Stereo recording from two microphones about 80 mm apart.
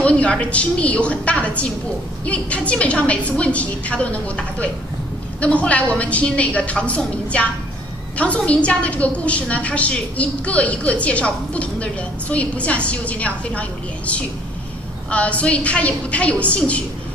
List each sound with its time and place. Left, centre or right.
0.0 s a woman's voice: centre